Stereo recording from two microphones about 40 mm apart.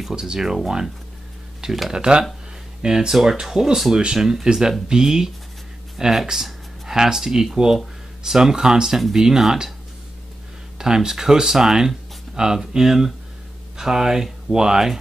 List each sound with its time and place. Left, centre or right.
0.1 s speech: centre
1.6 s speech: centre
1.9 s speech: right
10.8 s speech: centre